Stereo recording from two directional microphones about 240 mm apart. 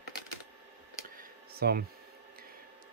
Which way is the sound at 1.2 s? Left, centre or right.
Right.